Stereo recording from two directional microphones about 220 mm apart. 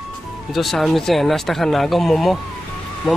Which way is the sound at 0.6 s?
Centre (ahead or behind).